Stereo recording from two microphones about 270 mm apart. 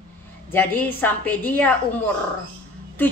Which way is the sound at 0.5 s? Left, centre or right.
Centre.